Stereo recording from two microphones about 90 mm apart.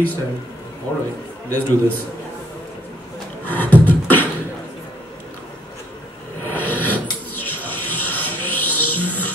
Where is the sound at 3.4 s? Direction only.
20° left (ahead or behind).